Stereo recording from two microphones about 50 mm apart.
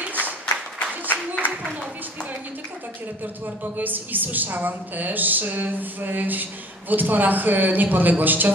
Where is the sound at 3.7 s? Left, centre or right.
Right.